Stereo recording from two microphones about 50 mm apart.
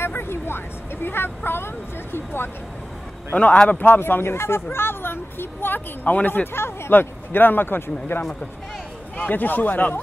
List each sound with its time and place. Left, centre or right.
0.0 s a sound: left
1.0 s speech: left
3.6 s a man's voice: left
4.0 s a man's voice: left
6.5 s speech: left
9.1 s a man's voice: left